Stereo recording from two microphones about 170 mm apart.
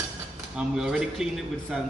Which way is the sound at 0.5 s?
5° right (ahead or behind).